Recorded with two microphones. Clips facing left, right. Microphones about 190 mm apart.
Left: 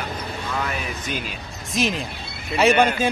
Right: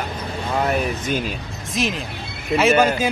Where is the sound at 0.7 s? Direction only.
45° right (ahead or behind).